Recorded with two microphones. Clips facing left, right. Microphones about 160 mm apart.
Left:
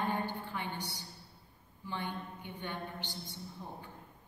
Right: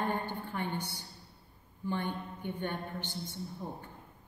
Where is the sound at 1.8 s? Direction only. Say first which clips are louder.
Right 5 dB; 50° right (ahead or behind).